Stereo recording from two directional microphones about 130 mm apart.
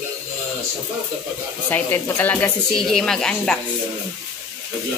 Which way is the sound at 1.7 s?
15° left (ahead or behind).